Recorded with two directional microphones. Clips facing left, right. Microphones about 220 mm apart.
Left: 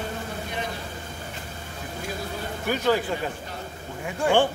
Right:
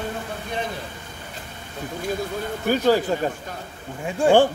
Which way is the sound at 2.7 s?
35° right (ahead or behind).